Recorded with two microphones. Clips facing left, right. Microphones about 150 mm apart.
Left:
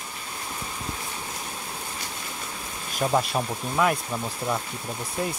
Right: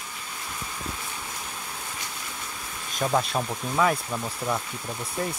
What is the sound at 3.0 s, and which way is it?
Speech, 5° left (ahead or behind).